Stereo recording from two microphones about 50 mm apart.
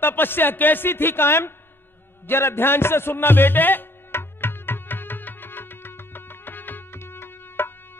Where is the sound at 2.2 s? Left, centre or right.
Left.